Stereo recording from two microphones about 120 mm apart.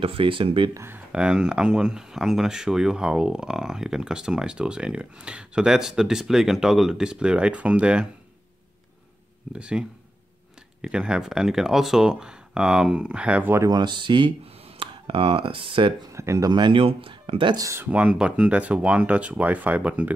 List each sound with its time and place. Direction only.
0.0 s speech: 45° right (ahead or behind)
0.7 s speech: 20° right (ahead or behind)
1.1 s speech: 5° right (ahead or behind)
9.5 s speech: 10° right (ahead or behind)
13.6 s speech: 35° right (ahead or behind)
16.1 s speech: 25° right (ahead or behind); by 17.6 s 45° right (ahead or behind)
17.6 s speech: 25° right (ahead or behind)
17.8 s speech: 10° right (ahead or behind)